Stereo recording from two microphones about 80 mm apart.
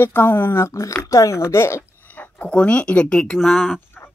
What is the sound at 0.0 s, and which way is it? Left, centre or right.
Speech, left.